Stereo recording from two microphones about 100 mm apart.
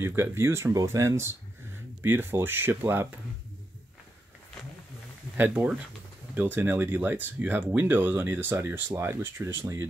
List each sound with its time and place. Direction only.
0.0 s speech: 25° right (ahead or behind)
5.4 s speech: 15° right (ahead or behind)